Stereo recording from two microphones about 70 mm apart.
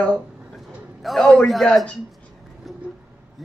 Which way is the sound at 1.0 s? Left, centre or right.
Centre.